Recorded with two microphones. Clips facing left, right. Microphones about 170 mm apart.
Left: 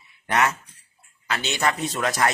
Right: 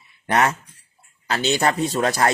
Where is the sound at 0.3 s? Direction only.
35° right (ahead or behind).